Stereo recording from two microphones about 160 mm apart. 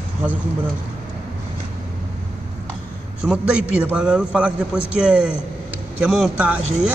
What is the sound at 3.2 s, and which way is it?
A man's voice, 5° right (ahead or behind).